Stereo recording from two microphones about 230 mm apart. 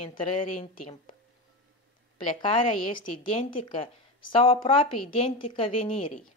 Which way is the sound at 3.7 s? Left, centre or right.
Left.